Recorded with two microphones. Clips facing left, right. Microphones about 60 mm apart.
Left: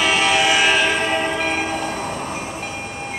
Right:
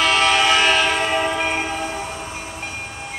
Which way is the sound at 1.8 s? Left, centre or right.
Left.